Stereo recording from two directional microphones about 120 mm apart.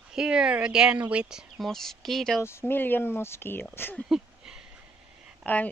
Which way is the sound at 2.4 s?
20° left (ahead or behind).